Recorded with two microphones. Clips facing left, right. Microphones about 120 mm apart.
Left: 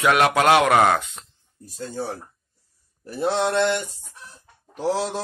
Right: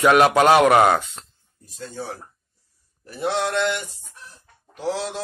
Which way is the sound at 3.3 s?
35° left (ahead or behind).